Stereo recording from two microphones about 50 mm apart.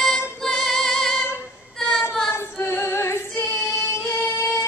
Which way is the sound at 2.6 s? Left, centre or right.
Left.